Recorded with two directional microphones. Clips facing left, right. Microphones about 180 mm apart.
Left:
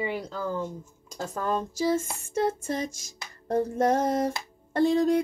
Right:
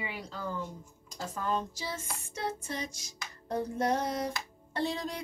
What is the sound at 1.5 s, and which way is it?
Music, 45° left (ahead or behind).